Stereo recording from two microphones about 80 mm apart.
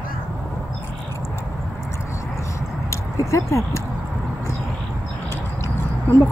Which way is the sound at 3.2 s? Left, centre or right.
Left.